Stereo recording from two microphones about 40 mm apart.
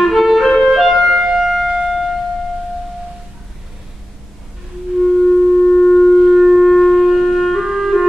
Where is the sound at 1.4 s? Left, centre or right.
Centre.